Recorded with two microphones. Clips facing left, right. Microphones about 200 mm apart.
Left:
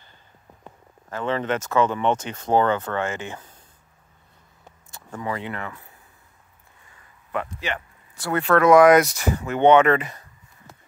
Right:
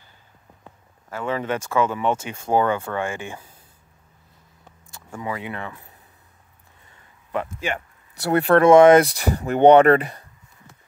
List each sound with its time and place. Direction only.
1.1 s speech: 10° right (ahead or behind)
4.9 s speech: 10° right (ahead or behind)
8.3 s speech: 35° right (ahead or behind)